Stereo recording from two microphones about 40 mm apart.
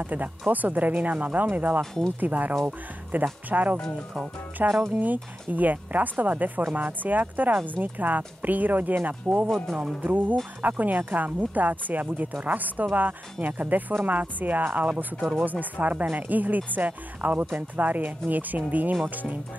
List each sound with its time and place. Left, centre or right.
0.0 s speech: right